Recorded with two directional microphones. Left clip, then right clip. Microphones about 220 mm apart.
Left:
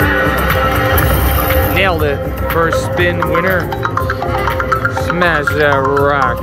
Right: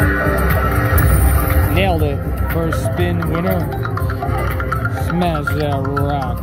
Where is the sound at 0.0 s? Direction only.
20° right (ahead or behind).